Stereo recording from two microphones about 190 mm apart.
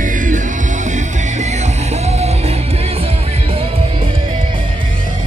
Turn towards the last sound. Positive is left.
turn(degrees=-30)  # may be behind; listen again after turning